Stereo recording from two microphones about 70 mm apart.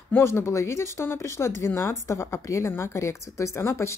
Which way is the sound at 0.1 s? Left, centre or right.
Left.